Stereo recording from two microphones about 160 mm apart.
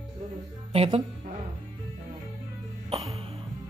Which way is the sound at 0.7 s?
40° right (ahead or behind).